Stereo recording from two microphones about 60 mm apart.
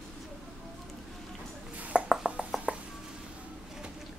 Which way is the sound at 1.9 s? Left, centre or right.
Centre.